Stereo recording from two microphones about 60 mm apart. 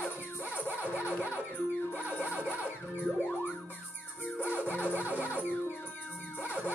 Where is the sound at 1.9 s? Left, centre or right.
Left.